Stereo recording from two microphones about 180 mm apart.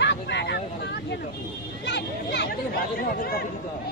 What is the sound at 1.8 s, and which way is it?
Chatter, 75° left (ahead or behind).